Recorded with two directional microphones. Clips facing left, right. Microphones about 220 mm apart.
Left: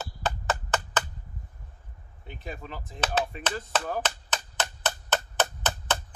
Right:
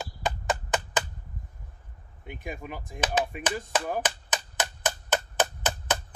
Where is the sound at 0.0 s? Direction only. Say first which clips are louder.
Even; 10° right (ahead or behind).